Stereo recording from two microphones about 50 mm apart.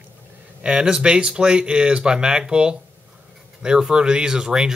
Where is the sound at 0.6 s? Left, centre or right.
Centre.